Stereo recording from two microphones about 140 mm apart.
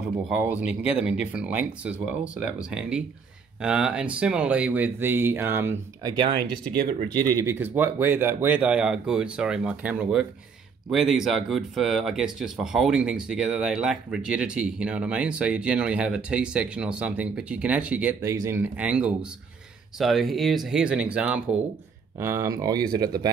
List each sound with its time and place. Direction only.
0.3 s speech: 10° right (ahead or behind)
6.0 s speech: 35° right (ahead or behind); by 21.5 s 10° right (ahead or behind)
22.2 s speech: 20° right (ahead or behind)